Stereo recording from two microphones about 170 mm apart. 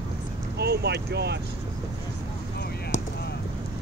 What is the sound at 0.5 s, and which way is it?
Speech, 70° right (ahead or behind).